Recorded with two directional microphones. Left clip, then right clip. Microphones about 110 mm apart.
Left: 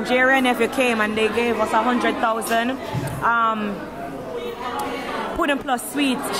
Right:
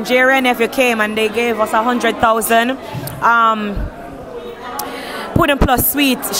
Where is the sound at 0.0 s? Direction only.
25° right (ahead or behind).